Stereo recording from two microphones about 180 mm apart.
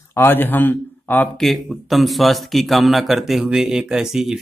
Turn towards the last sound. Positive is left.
turn(degrees=-5)  # may be behind; listen again after turning